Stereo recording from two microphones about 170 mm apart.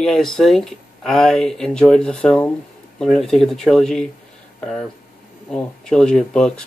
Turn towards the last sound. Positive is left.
turn(degrees=5)  # may be behind; listen again after turning